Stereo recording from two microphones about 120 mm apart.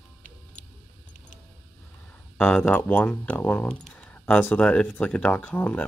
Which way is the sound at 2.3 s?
10° left (ahead or behind).